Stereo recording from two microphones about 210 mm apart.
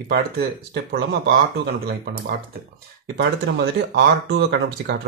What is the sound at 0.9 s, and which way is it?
Speech, 50° right (ahead or behind).